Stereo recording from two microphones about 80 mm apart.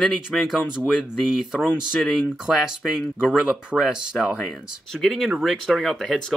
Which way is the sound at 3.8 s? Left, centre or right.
Centre.